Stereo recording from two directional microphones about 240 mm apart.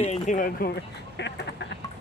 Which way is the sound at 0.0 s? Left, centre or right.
Left.